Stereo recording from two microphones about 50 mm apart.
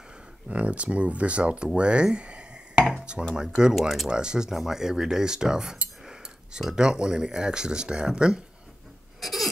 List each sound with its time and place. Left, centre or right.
0.5 s speech: right
9.2 s hiccup: centre